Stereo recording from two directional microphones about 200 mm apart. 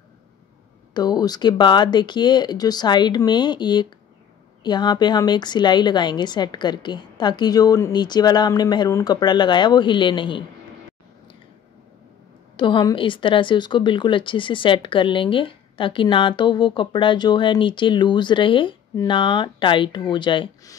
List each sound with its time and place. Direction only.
0.9 s a woman's voice: 20° left (ahead or behind)
12.5 s a woman's voice: 25° left (ahead or behind)